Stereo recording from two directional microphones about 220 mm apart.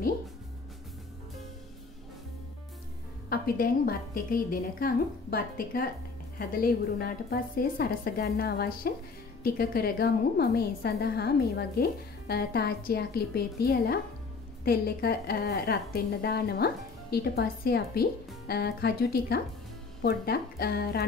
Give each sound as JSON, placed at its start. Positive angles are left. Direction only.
{"t": 3.3, "sound": "a woman's voice", "side_deg": 45}